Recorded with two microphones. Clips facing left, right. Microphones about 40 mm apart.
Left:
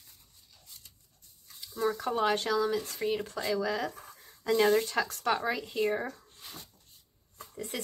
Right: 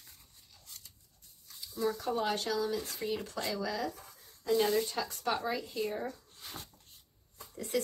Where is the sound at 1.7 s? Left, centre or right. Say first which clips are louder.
Left 3 dB; left.